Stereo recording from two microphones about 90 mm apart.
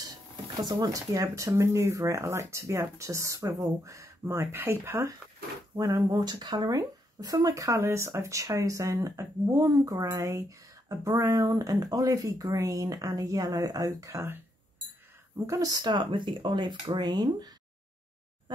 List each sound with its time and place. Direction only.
0.6 s speech: 50° right (ahead or behind)
6.1 s speech: 50° right (ahead or behind)
15.8 s speech: 65° right (ahead or behind); by 17.5 s 50° right (ahead or behind)